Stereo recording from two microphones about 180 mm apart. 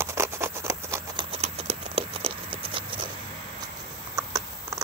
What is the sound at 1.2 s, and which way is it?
Patter, 35° right (ahead or behind).